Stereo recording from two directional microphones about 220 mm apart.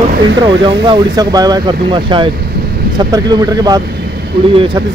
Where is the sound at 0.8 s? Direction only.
20° right (ahead or behind).